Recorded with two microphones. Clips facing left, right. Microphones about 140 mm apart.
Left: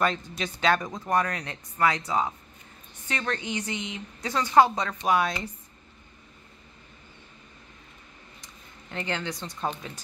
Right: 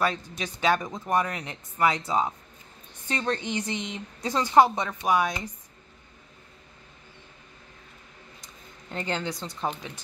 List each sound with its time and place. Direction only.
0.0 s speech: 10° right (ahead or behind); by 4.3 s 35° right (ahead or behind)
4.3 s speech: 20° right (ahead or behind)
9.1 s speech: 30° right (ahead or behind)
9.4 s speech: 5° right (ahead or behind)